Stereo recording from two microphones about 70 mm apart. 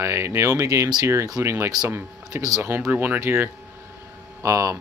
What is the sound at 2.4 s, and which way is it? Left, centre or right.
Speech, right.